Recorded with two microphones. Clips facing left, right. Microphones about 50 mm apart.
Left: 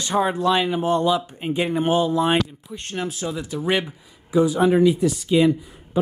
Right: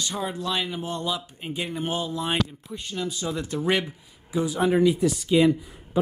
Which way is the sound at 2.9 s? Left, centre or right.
Left.